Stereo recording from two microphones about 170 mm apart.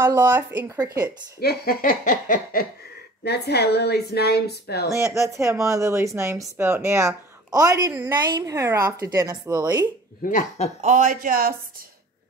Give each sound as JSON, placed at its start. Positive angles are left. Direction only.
{"t": 0.0, "sound": "speech", "side_deg": -15}
{"t": 1.4, "sound": "laughter", "side_deg": 65}
{"t": 3.3, "sound": "a woman's voice", "side_deg": 75}
{"t": 4.8, "sound": "speech", "side_deg": -15}
{"t": 10.8, "sound": "speech", "side_deg": -45}